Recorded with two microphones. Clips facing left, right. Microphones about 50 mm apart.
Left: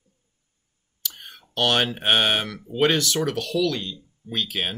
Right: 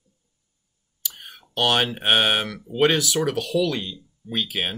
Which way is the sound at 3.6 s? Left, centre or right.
Centre.